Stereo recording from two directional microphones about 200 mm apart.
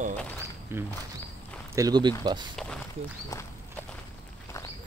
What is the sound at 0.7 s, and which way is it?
Speech, 10° right (ahead or behind).